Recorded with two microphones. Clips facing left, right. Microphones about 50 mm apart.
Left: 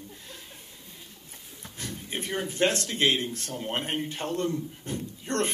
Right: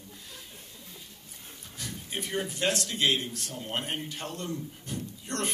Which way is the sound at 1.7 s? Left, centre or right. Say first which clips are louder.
Left 2 dB; left.